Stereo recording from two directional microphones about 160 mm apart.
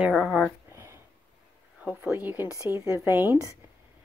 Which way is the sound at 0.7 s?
15° right (ahead or behind).